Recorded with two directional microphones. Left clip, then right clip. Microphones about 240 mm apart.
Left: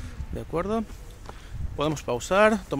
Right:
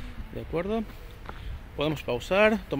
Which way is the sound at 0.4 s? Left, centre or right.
Centre.